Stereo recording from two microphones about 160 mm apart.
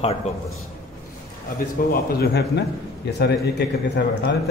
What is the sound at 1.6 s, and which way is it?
A man's voice, 65° left (ahead or behind).